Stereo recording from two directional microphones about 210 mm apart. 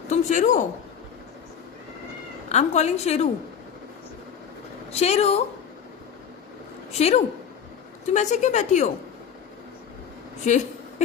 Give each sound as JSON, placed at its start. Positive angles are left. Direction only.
{"t": 0.1, "sound": "a woman's voice", "side_deg": 35}
{"t": 2.5, "sound": "a woman's voice", "side_deg": 30}
{"t": 4.9, "sound": "a woman's voice", "side_deg": 30}
{"t": 6.9, "sound": "a woman's voice", "side_deg": 30}
{"t": 10.4, "sound": "a woman's voice", "side_deg": 35}